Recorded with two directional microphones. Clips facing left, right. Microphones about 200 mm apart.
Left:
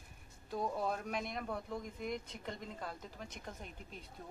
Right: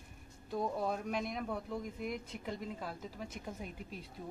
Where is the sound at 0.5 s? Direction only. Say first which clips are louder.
Right 2 dB; centre (ahead or behind).